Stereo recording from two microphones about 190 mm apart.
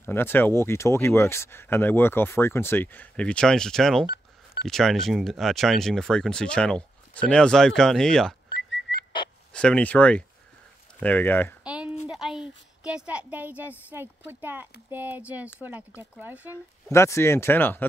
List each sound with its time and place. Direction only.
0.0 s speech: 10° left (ahead or behind)
8.9 s whistling: 80° left
9.5 s speech: 5° left (ahead or behind)
11.6 s a sound: 5° right (ahead or behind)
12.1 s a woman's voice: centre (ahead or behind)
16.9 s speech: 15° left (ahead or behind)